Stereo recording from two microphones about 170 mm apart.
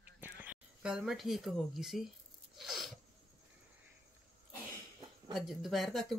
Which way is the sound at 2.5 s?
Centre (ahead or behind).